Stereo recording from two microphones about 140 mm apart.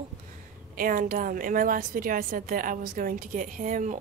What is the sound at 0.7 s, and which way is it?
A woman's voice, 80° right.